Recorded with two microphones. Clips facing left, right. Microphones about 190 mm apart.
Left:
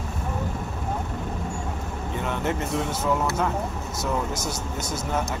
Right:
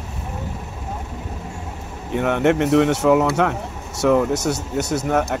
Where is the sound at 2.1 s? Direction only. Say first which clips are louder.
Right 10 dB; 70° right (ahead or behind).